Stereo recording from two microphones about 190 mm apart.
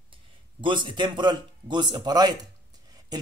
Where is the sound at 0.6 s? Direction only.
25° right (ahead or behind).